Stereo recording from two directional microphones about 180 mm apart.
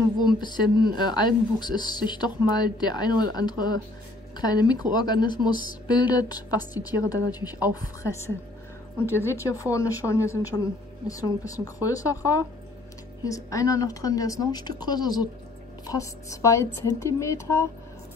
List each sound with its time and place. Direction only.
0.4 s a woman's voice: 25° left (ahead or behind)